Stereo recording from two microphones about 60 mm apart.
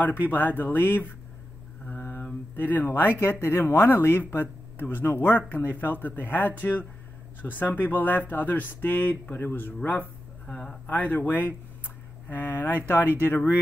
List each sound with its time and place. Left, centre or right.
0.0 s speech: left
1.9 s a sound: left
2.5 s speech: left
10.4 s speech: centre
10.9 s speech: left